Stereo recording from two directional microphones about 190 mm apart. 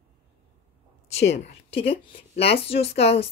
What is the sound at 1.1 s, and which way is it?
Speech, 35° left (ahead or behind).